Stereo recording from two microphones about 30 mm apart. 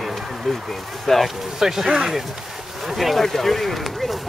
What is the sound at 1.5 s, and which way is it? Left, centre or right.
Speech, centre.